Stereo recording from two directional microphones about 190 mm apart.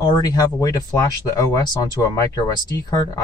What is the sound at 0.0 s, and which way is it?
Speech, 20° left (ahead or behind).